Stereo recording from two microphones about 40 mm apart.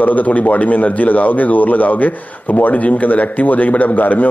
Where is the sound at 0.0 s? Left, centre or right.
Left.